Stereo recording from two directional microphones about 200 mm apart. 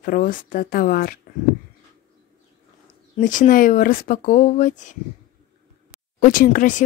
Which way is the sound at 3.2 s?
40° left (ahead or behind).